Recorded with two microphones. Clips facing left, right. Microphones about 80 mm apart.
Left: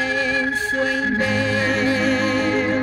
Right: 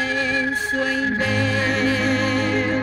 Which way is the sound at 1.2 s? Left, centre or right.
Centre.